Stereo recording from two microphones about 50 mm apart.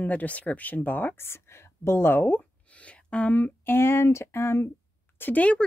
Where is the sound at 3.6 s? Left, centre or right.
Left.